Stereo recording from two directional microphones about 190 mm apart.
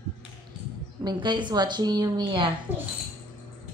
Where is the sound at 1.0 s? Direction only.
25° right (ahead or behind).